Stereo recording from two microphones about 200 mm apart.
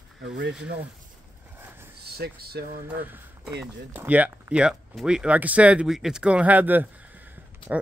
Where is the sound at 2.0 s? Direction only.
50° right (ahead or behind).